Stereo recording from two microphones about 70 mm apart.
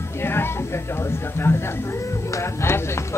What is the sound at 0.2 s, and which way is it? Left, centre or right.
Speech, left.